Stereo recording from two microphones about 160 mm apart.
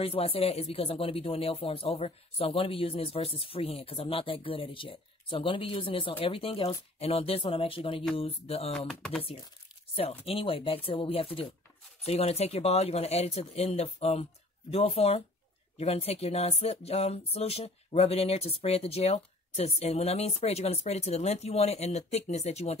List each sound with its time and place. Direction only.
0.0 s speech: 35° left (ahead or behind)
8.7 s speech: 5° left (ahead or behind)
9.9 s speech: 40° left (ahead or behind)